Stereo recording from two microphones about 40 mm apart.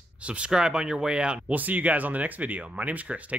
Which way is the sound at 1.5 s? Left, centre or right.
Right.